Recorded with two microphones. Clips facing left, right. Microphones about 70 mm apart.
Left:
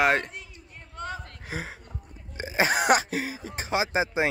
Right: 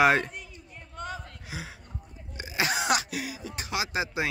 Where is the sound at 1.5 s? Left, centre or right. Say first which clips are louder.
Left 5 dB; left.